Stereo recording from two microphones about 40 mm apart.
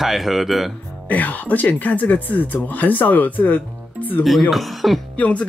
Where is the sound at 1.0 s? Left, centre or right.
Left.